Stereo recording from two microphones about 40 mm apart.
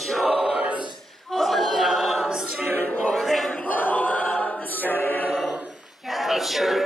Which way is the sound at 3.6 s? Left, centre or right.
Left.